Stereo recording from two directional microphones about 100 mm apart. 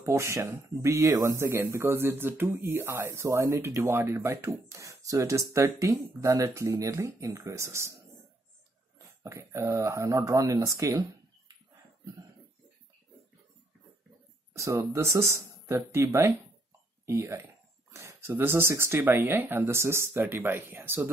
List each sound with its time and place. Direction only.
0.0 s speech: 30° right (ahead or behind)
8.9 s speech: 30° right (ahead or behind)
14.5 s speech: 30° right (ahead or behind)